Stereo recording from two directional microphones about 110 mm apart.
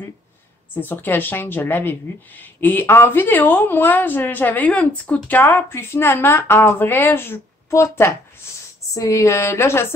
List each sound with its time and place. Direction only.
0.7 s speech: 20° left (ahead or behind)